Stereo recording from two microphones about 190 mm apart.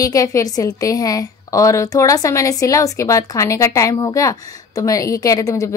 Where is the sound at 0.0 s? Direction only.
20° left (ahead or behind).